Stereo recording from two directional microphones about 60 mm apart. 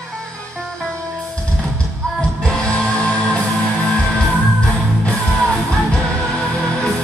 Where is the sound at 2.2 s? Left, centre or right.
Centre.